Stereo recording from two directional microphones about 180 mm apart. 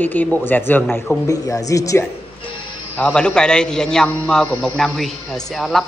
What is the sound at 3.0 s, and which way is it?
A woman's voice, 5° left (ahead or behind).